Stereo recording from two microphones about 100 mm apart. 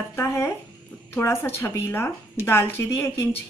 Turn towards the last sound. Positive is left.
turn(degrees=20)  # may be behind; listen again after turning